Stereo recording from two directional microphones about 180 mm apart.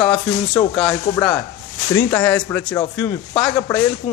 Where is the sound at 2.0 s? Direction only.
10° left (ahead or behind).